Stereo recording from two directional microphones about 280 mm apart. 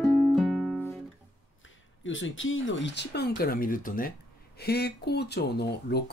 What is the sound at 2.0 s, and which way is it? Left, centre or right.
Speech, left.